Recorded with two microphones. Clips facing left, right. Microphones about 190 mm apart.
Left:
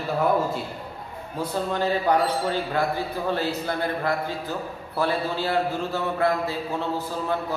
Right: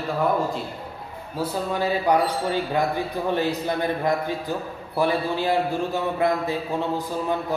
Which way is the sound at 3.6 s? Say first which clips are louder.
Right 2 dB; 15° right (ahead or behind).